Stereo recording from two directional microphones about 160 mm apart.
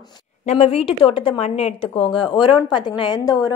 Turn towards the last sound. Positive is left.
turn(degrees=25)  # may be behind; listen again after turning